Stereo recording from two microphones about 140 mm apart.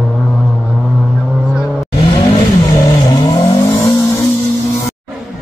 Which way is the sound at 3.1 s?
30° left (ahead or behind).